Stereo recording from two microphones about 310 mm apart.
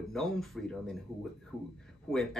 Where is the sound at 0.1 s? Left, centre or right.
Centre.